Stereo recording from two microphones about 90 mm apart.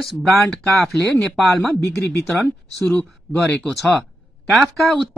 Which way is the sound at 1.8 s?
30° left (ahead or behind).